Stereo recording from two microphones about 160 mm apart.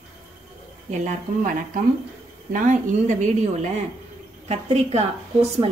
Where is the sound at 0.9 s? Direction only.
55° right (ahead or behind).